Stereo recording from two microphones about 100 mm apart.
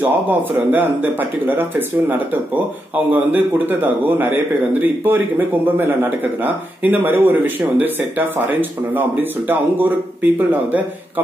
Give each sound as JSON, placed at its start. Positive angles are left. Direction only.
{"t": 0.0, "sound": "a man's voice", "side_deg": -20}